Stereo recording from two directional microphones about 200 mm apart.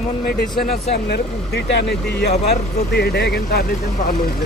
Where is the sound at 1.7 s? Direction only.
60° left (ahead or behind).